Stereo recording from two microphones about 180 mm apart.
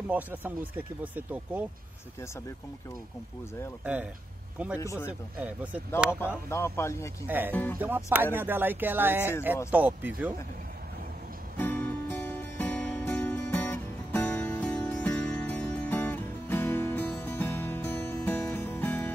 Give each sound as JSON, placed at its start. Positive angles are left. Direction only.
{"t": 0.1, "sound": "speech", "side_deg": -10}
{"t": 3.8, "sound": "speech", "side_deg": -5}
{"t": 4.7, "sound": "speech", "side_deg": 15}
{"t": 5.0, "sound": "speech", "side_deg": -10}
{"t": 6.0, "sound": "speech", "side_deg": 10}
{"t": 7.2, "sound": "speech", "side_deg": -10}
{"t": 11.5, "sound": "music", "side_deg": 10}